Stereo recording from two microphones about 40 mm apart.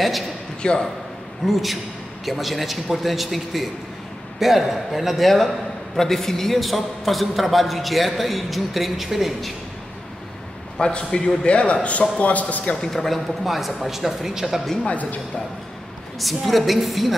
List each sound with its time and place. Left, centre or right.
0.6 s a man's voice: left
1.4 s a man's voice: centre
5.9 s a man's voice: centre
10.8 s a man's voice: left
12.8 s a man's voice: centre
13.4 s a man's voice: centre
16.2 s a man's voice: centre